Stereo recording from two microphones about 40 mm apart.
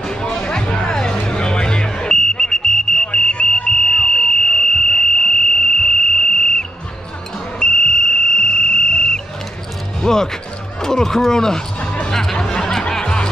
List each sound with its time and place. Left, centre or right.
0.0 s music: centre
3.1 s a sound: left
7.5 s frog: left
10.0 s music: centre
10.8 s a sound: centre
11.8 s music: left
12.1 s music: centre